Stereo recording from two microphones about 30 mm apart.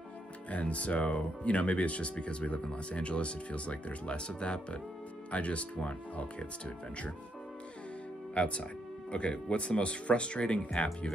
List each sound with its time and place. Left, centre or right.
0.5 s speech: left
5.3 s speech: left
8.4 s speech: left